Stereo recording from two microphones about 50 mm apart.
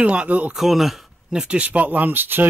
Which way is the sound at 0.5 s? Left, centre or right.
Centre.